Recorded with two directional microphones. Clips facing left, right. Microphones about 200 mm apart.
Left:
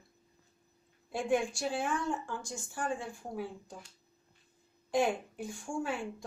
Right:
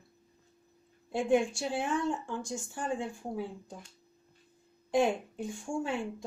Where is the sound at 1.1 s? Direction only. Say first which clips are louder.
Right 4 dB; 25° right (ahead or behind).